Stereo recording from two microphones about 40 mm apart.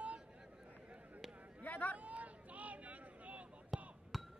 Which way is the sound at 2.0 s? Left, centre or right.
Right.